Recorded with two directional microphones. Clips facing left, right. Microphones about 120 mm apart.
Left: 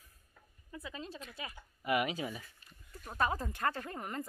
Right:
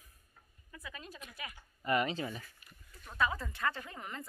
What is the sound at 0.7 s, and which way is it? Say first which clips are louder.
Speech: left 4 dB; 25° left (ahead or behind).